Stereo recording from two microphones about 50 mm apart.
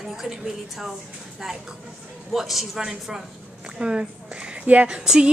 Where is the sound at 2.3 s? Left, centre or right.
Centre.